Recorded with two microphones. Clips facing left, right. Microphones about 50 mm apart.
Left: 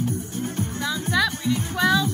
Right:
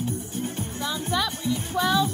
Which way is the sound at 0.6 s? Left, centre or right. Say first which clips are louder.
Left 3 dB; left.